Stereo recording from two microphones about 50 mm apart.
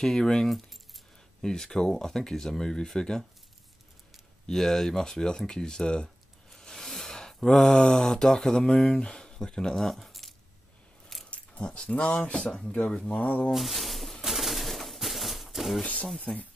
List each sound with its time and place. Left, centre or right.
0.0 s speech: centre
4.5 s speech: centre
9.8 s keys jangling: centre
11.2 s keys jangling: left
11.6 s speech: left
13.2 s speech: left
13.5 s a sound: centre
14.2 s pigeon: centre
16.3 s speech: centre